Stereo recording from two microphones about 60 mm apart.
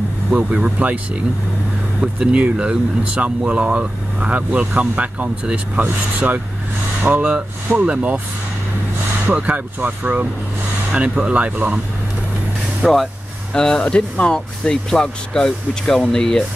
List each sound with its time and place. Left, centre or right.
0.3 s speech: right
2.0 s speech: centre
9.3 s speech: right
12.8 s vehicle: centre
13.6 s speech: centre